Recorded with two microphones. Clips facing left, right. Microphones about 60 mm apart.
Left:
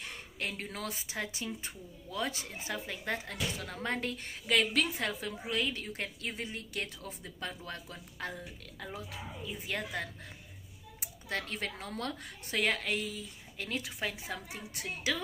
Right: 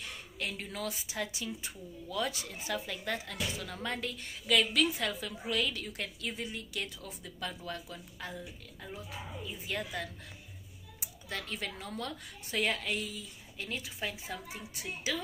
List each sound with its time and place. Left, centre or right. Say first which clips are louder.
0.4 s a woman's voice: even; left